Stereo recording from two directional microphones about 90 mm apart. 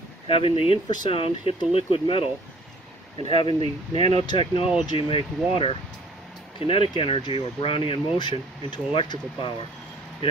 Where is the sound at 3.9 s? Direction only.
55° left (ahead or behind).